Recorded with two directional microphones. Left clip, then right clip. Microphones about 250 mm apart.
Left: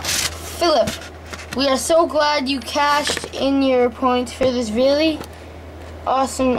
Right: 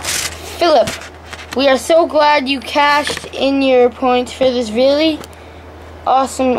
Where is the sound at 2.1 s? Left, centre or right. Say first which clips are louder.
Right 6 dB; centre.